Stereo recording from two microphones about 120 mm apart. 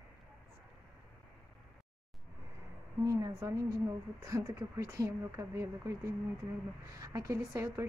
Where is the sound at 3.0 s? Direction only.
25° right (ahead or behind).